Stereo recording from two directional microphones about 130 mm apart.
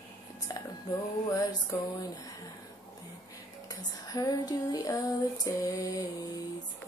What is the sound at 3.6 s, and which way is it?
Female singing, 30° left (ahead or behind).